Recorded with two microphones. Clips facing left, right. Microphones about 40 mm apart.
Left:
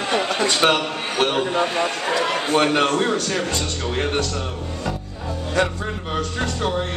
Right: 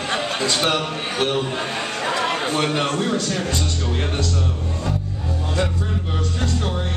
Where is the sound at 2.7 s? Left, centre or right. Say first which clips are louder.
Left 3 dB; left.